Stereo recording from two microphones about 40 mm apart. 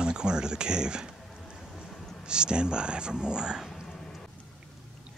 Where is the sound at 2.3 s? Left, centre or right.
Right.